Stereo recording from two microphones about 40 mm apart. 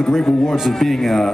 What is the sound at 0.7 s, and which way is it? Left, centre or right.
Speech, centre.